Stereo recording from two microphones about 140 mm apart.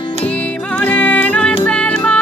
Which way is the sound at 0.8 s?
10° left (ahead or behind).